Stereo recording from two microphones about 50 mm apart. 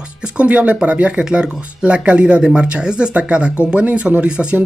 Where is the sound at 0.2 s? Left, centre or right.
Right.